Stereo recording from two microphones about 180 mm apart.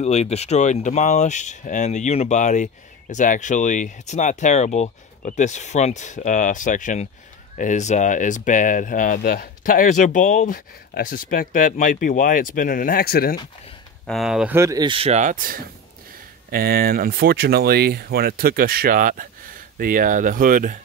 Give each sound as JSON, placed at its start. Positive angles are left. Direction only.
{"t": 0.0, "sound": "speech", "side_deg": 35}
{"t": 14.0, "sound": "speech", "side_deg": 0}